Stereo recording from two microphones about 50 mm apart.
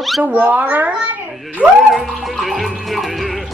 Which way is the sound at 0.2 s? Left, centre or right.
Right.